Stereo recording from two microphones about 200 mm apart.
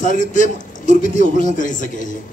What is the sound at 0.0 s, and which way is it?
A man's voice, 40° left (ahead or behind).